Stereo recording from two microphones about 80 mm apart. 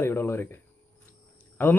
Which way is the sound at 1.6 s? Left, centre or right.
Left.